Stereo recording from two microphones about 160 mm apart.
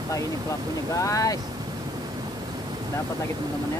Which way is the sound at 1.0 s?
20° left (ahead or behind).